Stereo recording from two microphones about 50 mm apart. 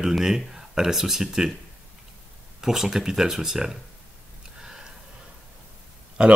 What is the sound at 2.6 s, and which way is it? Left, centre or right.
Speech, centre.